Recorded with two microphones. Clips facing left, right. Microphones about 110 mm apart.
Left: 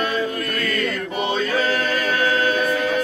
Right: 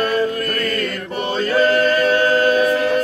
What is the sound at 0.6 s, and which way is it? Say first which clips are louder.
Chant: left 1 dB; 45° right (ahead or behind).